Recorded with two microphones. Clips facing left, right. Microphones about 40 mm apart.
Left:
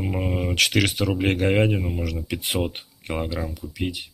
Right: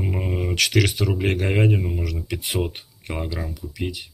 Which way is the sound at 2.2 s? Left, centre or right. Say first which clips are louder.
Even; centre.